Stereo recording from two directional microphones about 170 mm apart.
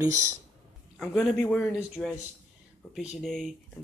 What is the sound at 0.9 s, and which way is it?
Speech, 5° left (ahead or behind).